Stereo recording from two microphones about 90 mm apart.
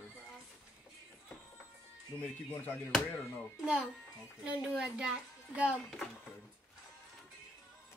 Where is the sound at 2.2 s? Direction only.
20° left (ahead or behind).